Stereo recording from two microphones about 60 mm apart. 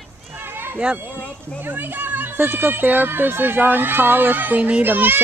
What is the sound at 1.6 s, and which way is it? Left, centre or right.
Speech, right.